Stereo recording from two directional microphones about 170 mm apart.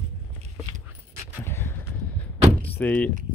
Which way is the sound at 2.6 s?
10° left (ahead or behind).